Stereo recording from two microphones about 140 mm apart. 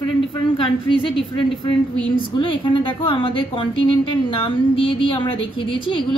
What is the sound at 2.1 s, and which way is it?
A woman's voice, 35° left (ahead or behind).